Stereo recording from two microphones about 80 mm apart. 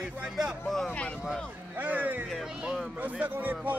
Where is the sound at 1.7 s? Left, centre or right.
Right.